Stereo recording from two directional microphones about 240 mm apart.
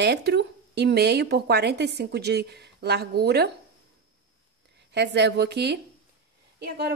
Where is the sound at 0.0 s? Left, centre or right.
Right.